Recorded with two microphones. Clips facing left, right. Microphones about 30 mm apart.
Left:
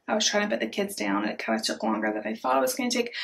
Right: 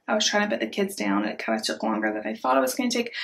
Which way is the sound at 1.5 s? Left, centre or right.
Centre.